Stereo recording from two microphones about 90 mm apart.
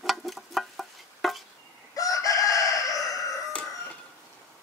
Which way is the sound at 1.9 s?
40° left (ahead or behind).